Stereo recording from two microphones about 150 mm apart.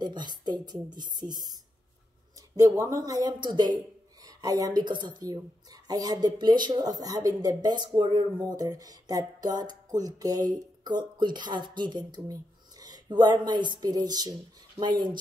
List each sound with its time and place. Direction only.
0.0 s speech: 30° right (ahead or behind)